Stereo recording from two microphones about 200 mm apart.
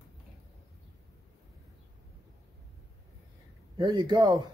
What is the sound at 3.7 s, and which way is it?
Speech, 20° right (ahead or behind).